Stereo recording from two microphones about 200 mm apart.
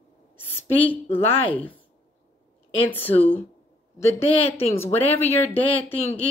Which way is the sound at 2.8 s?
10° left (ahead or behind).